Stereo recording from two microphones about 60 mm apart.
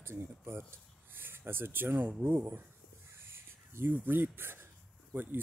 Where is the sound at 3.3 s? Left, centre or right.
Right.